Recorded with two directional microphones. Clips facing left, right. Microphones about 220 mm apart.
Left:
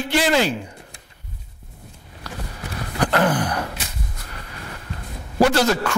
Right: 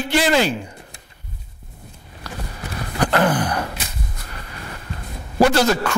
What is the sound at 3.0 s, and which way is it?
Gasp, 15° right (ahead or behind).